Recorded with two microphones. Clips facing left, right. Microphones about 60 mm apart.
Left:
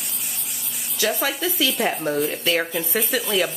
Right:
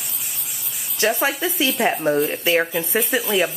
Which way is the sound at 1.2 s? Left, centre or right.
Right.